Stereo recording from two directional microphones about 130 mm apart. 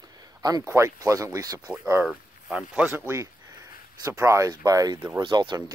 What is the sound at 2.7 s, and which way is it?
Speech, 10° right (ahead or behind).